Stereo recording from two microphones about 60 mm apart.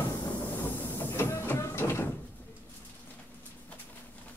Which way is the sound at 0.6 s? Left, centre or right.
Left.